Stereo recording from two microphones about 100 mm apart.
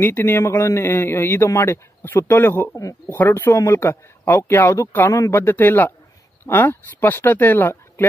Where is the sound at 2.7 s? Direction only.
35° left (ahead or behind).